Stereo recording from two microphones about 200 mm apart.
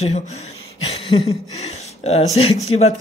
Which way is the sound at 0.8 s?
30° left (ahead or behind).